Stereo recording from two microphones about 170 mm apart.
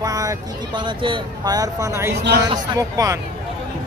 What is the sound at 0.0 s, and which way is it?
Speech, 20° right (ahead or behind).